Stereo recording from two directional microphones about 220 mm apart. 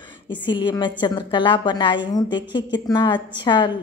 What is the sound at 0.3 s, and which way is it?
A woman's voice, 20° left (ahead or behind).